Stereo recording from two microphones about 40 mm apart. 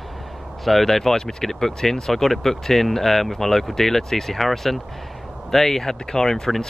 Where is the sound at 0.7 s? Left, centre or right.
Centre.